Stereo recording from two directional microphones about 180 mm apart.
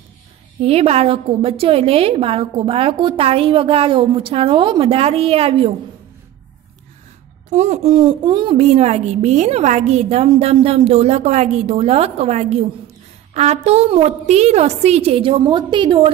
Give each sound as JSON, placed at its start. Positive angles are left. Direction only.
{"t": 0.6, "sound": "a woman's voice", "side_deg": -35}
{"t": 7.4, "sound": "a woman's voice", "side_deg": -40}